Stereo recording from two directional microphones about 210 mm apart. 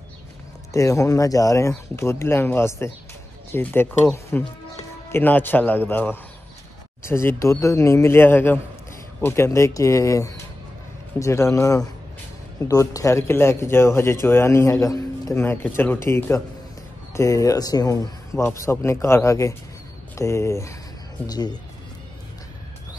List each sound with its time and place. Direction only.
0.7 s speech: 15° left (ahead or behind)